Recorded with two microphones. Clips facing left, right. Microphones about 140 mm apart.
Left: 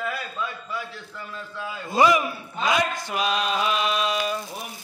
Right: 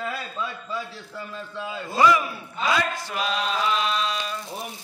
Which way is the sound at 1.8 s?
15° left (ahead or behind).